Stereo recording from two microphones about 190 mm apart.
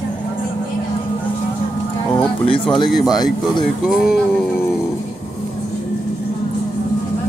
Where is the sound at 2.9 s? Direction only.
Centre (ahead or behind).